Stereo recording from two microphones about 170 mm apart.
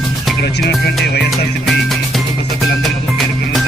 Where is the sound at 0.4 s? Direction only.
75° left (ahead or behind).